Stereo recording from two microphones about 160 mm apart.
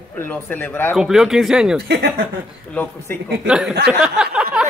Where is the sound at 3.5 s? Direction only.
Centre (ahead or behind).